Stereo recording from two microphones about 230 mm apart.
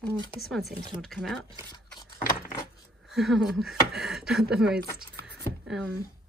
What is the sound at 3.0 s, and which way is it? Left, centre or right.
Speech, centre.